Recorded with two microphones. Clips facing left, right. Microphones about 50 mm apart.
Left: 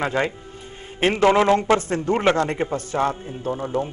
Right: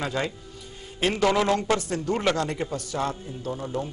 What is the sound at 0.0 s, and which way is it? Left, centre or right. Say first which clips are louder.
A man's voice: left 6 dB; left.